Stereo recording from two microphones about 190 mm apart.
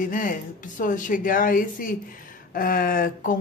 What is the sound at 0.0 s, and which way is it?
Speech, 45° left (ahead or behind).